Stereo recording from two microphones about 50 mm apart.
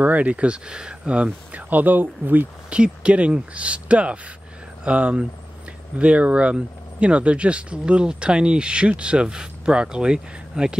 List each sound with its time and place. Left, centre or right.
0.0 s speech: right
1.7 s speech: right
2.7 s speech: right